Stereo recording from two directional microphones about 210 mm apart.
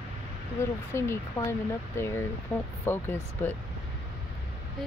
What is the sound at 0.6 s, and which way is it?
Speech, 10° left (ahead or behind).